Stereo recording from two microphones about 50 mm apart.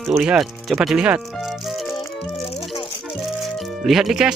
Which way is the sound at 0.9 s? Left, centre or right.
Right.